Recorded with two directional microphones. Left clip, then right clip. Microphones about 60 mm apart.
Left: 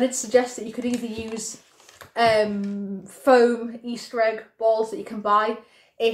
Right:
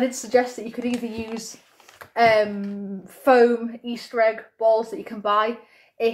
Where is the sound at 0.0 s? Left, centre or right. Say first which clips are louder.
Even; centre.